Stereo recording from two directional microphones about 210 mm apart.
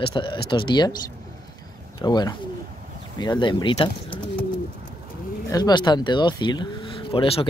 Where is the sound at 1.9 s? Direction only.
20° left (ahead or behind).